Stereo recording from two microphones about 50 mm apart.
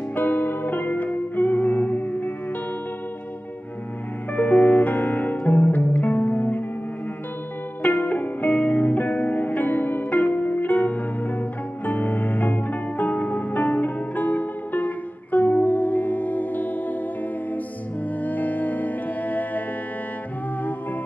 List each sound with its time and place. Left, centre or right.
0.1 s music: left
4.4 s music: left
7.8 s music: left
18.2 s music: left